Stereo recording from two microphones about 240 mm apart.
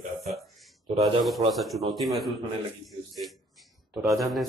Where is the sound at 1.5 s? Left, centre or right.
Centre.